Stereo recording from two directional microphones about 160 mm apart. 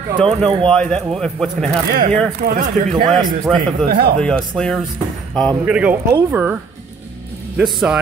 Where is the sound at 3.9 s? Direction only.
75° right (ahead or behind).